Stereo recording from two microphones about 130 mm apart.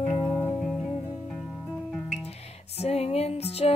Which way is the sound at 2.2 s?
55° left (ahead or behind).